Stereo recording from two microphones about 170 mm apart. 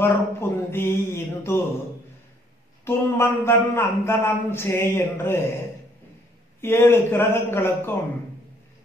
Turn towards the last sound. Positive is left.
turn(degrees=15)  # may be behind; listen again after turning